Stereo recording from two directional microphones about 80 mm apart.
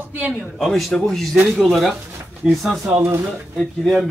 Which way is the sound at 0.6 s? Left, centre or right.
Centre.